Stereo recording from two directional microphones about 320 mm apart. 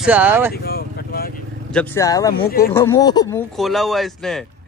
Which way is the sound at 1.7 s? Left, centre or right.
Centre.